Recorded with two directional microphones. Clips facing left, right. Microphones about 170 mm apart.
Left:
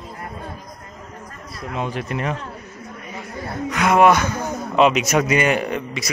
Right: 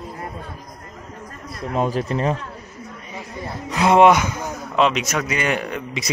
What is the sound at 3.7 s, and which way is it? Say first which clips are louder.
Speech: right 2 dB; 30° right (ahead or behind).